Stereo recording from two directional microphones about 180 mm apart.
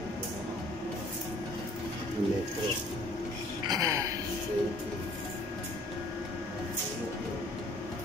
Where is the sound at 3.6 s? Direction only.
20° right (ahead or behind).